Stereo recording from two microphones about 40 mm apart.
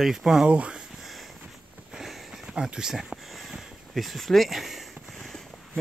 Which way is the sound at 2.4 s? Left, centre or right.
Centre.